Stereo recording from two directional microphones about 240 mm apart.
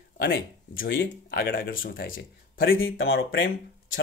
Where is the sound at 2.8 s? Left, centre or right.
Left.